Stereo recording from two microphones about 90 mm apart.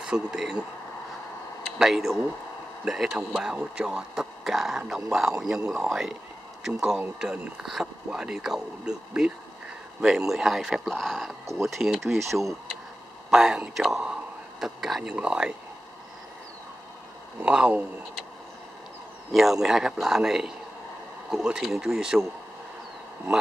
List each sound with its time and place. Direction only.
0.0 s speech: 10° right (ahead or behind)
1.8 s speech: centre (ahead or behind)
17.4 s speech: 10° right (ahead or behind)
19.3 s speech: 5° right (ahead or behind)